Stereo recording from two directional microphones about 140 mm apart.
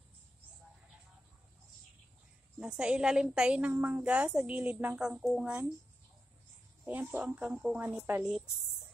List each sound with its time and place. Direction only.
2.6 s a woman's voice: 5° right (ahead or behind)
6.8 s a woman's voice: 10° right (ahead or behind)